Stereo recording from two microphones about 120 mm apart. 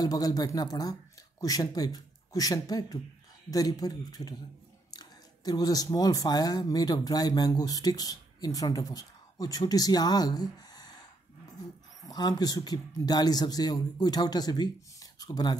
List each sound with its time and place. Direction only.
0.0 s speech: 30° left (ahead or behind)
12.0 s speech: 35° left (ahead or behind)